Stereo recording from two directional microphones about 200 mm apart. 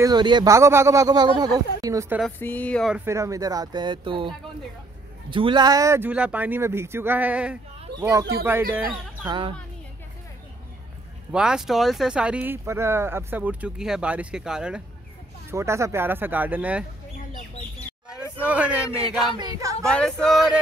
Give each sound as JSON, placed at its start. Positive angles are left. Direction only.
{"t": 0.0, "sound": "speech", "side_deg": -20}
{"t": 2.3, "sound": "speech", "side_deg": 10}
{"t": 3.1, "sound": "speech", "side_deg": -15}
{"t": 5.3, "sound": "speech", "side_deg": -25}
{"t": 7.9, "sound": "speech", "side_deg": -55}
{"t": 8.5, "sound": "speech", "side_deg": -10}
{"t": 9.2, "sound": "speech", "side_deg": -25}
{"t": 11.3, "sound": "speech", "side_deg": -5}
{"t": 18.4, "sound": "speech", "side_deg": -5}
{"t": 18.9, "sound": "speech", "side_deg": -25}
{"t": 19.8, "sound": "speech", "side_deg": 5}